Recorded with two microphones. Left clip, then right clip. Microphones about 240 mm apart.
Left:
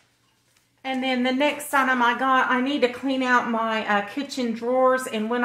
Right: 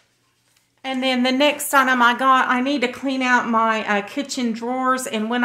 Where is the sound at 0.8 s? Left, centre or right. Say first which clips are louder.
Right 4 dB; right.